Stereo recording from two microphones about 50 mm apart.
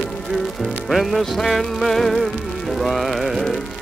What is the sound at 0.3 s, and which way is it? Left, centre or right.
Music, centre.